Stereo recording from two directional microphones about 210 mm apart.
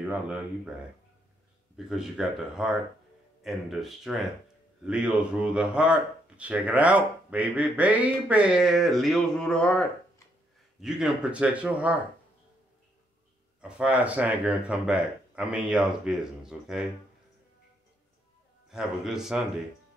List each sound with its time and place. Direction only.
1.9 s speech: 5° right (ahead or behind)
13.6 s speech: 5° right (ahead or behind)
18.7 s speech: centre (ahead or behind)